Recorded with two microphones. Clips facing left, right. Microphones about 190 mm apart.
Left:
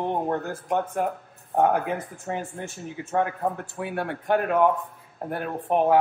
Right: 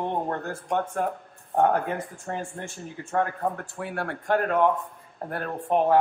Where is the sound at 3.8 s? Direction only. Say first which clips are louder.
Left 2 dB; 20° left (ahead or behind).